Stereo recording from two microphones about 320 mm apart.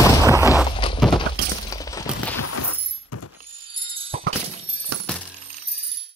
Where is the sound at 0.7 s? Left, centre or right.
Centre.